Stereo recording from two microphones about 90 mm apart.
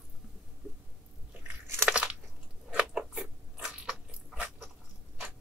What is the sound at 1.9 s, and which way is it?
Crunch, 15° right (ahead or behind).